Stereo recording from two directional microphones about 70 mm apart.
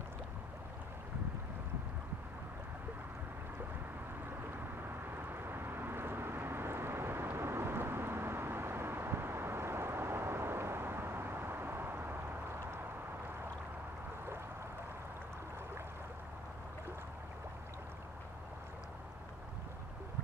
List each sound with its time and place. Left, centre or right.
5.1 s vehicle: right